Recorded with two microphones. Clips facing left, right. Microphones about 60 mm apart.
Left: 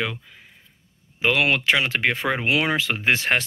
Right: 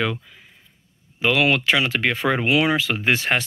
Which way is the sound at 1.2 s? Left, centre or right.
Left.